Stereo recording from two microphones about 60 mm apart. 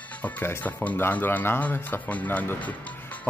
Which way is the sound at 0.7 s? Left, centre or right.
Left.